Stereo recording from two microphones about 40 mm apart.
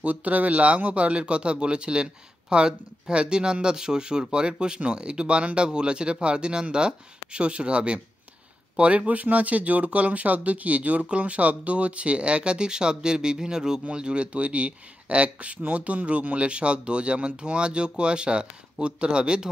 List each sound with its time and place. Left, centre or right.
0.0 s speech: right; by 13.7 s centre
13.8 s speech: right